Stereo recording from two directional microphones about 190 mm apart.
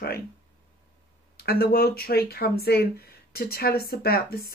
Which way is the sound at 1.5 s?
55° left (ahead or behind).